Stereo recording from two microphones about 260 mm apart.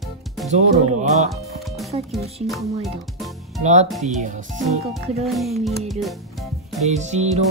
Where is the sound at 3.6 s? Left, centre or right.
Right.